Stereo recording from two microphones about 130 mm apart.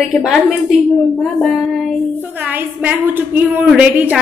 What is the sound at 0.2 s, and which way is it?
Speech, centre (ahead or behind).